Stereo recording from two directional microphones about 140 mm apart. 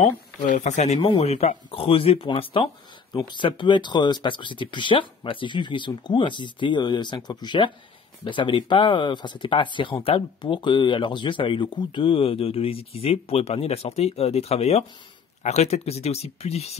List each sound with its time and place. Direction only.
0.6 s speech: 55° left (ahead or behind)